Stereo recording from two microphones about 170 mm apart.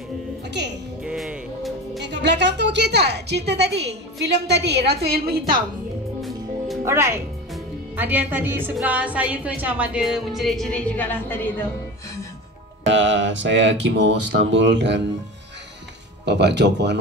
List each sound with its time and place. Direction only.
0.5 s a woman's voice: 85° right
1.0 s music: 5° right (ahead or behind)
2.0 s a woman's voice: 90° right; by 5.4 s 65° right (ahead or behind)
6.8 s a woman's voice: 15° right (ahead or behind); by 11.6 s 10° left (ahead or behind)
12.8 s speech: 90° right
16.3 s speech: 90° right